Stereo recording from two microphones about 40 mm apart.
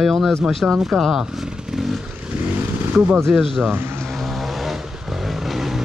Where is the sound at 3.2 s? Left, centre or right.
Centre.